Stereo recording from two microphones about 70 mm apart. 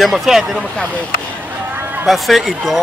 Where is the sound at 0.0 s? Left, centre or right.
Centre.